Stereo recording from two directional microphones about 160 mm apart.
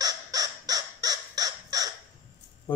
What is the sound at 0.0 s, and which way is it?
Bird, 25° right (ahead or behind).